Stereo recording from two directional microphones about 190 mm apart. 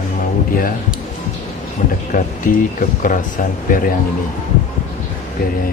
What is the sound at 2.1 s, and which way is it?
Speech, 45° left (ahead or behind).